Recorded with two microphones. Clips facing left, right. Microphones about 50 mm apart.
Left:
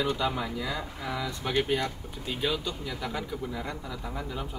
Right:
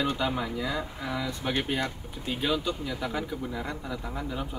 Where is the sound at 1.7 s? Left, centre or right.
Centre.